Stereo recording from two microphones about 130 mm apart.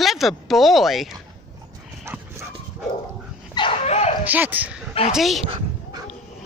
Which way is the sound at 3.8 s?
55° left (ahead or behind).